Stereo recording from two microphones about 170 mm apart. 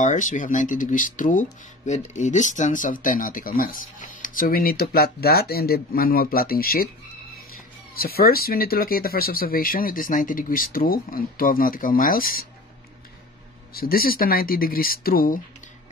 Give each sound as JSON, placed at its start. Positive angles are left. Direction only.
{"t": 0.0, "sound": "speech", "side_deg": 50}
{"t": 7.9, "sound": "speech", "side_deg": 60}
{"t": 13.7, "sound": "speech", "side_deg": 60}